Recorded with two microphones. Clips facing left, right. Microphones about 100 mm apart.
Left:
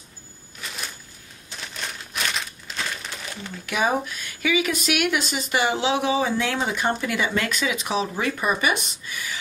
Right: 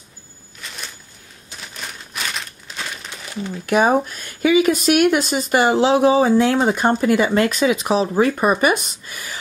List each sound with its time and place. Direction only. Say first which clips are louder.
0.6 s a sound: even; centre (ahead or behind)
1.5 s crumpling: even; centre (ahead or behind)
3.6 s speech: right 7 dB; 45° right (ahead or behind)